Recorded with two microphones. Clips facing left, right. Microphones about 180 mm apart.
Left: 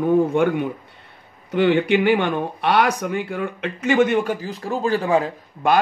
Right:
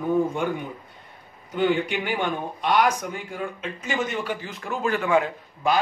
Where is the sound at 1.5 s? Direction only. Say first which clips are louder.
Left 6 dB; 70° left (ahead or behind); by 5.3 s 35° left (ahead or behind).